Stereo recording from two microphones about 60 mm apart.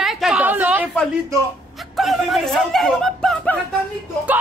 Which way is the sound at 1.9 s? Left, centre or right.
Centre.